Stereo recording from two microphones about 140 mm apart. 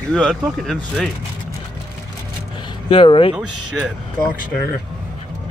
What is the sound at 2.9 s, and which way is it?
Speech, 40° left (ahead or behind).